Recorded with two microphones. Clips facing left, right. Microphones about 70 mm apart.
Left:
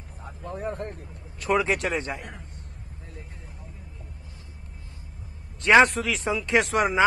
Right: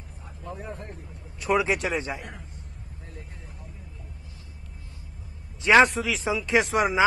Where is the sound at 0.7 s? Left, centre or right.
Left.